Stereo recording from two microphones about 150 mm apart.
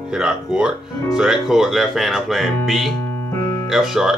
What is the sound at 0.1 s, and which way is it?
Speech, 5° right (ahead or behind).